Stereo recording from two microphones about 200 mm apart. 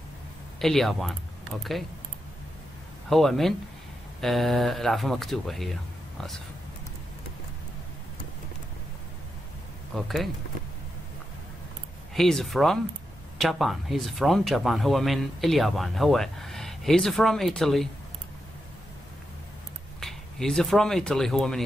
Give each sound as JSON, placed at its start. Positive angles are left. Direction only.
{"t": 0.6, "sound": "speech", "side_deg": 0}
{"t": 3.1, "sound": "speech", "side_deg": 0}
{"t": 9.9, "sound": "speech", "side_deg": 0}
{"t": 12.1, "sound": "speech", "side_deg": 0}
{"t": 20.0, "sound": "speech", "side_deg": 0}